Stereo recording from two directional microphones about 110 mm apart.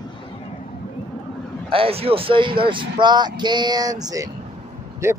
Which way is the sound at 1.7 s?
60° right (ahead or behind).